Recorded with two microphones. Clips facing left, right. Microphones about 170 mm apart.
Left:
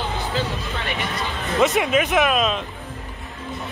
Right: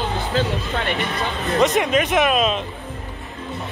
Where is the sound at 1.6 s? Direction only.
Centre (ahead or behind).